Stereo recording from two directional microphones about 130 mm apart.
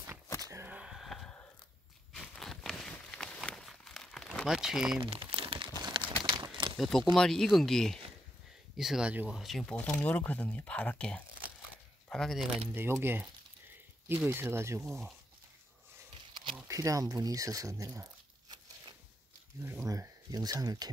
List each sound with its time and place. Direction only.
0.7 s a sound: 5° right (ahead or behind)
5.0 s crumpling: 45° right (ahead or behind)
6.2 s a sound: 40° right (ahead or behind)
6.8 s speech: centre (ahead or behind)
9.8 s speech: 10° left (ahead or behind)
12.7 s speech: 15° right (ahead or behind)
16.6 s speech: 25° right (ahead or behind)
19.6 s speech: 20° right (ahead or behind)